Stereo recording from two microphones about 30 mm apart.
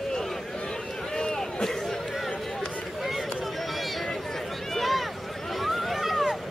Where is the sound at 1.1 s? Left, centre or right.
Centre.